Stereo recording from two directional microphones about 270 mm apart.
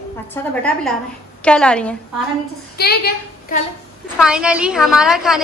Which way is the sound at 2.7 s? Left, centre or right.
Left.